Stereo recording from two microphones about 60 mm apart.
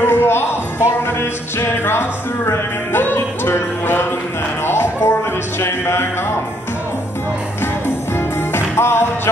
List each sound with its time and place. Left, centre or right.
0.0 s music: left
8.5 s music: left